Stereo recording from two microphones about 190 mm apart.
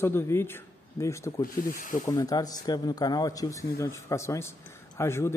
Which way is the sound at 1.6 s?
45° left (ahead or behind).